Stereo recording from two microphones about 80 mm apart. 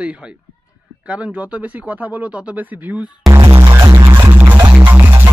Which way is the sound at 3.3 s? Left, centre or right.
Right.